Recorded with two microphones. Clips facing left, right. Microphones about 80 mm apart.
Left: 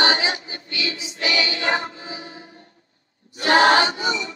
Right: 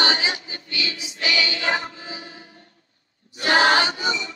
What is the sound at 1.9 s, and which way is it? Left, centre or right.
Music, left.